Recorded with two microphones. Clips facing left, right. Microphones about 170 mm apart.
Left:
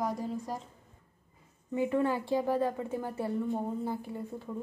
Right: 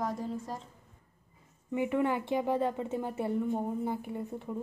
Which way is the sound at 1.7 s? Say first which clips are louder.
Even; 20° right (ahead or behind).